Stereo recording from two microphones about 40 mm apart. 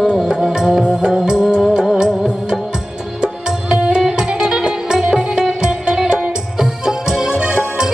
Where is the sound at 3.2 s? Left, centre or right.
Centre.